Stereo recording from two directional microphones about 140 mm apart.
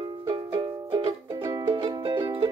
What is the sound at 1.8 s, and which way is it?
Music, 40° right (ahead or behind).